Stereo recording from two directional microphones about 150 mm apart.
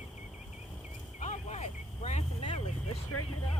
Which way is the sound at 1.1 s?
50° left (ahead or behind).